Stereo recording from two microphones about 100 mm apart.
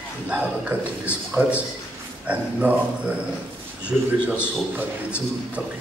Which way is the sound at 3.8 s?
15° right (ahead or behind).